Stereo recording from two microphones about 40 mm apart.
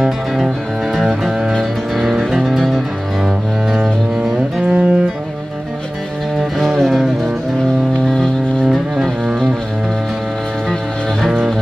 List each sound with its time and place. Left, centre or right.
0.9 s music: centre
3.7 s music: centre
4.6 s music: right
6.6 s music: centre
11.2 s music: centre